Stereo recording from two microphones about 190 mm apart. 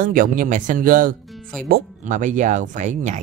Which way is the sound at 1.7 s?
40° right (ahead or behind).